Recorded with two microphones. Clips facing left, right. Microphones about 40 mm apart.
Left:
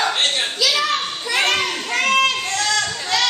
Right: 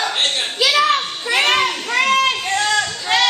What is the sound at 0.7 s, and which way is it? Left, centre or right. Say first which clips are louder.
Children playing: right 4 dB; right.